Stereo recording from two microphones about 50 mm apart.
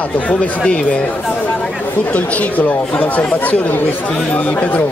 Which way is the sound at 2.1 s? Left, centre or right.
Left.